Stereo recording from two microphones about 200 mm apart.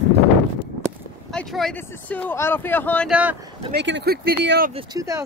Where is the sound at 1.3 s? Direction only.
Centre (ahead or behind).